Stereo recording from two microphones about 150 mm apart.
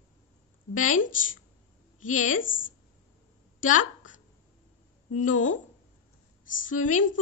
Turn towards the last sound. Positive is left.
turn(degrees=60)  # may be behind; listen again after turning